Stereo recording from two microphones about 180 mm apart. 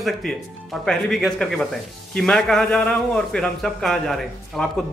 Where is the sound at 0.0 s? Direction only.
Centre (ahead or behind).